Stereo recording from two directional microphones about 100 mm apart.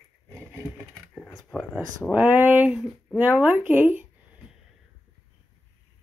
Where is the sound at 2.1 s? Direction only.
15° right (ahead or behind).